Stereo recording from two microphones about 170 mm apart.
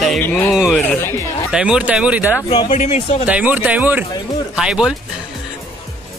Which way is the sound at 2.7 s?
45° left (ahead or behind).